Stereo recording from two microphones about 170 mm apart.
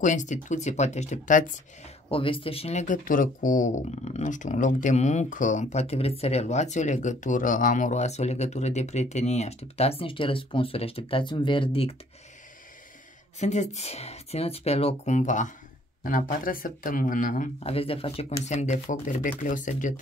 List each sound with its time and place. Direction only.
0.0 s speech: 45° left (ahead or behind)
2.0 s speech: 30° left (ahead or behind)
13.4 s speech: 45° left (ahead or behind)
17.6 s speech: 35° left (ahead or behind)